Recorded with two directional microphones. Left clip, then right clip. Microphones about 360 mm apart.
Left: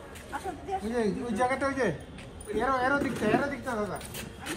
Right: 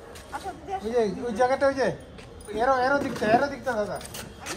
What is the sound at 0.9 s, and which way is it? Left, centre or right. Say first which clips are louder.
Speech: right 7 dB; right.